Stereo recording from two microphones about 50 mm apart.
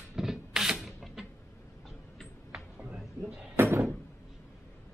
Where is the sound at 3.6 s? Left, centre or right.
Right.